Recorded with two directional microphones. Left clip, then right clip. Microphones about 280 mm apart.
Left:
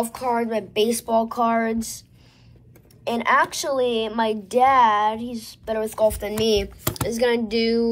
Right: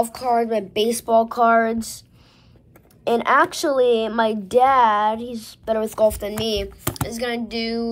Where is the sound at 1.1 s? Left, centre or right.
Right.